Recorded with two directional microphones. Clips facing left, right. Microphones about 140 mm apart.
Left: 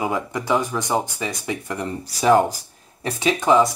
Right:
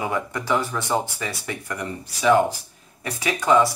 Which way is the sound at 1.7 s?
35° left (ahead or behind).